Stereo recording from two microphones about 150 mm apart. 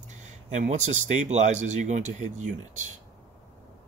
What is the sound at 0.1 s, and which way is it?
Speech, 50° right (ahead or behind).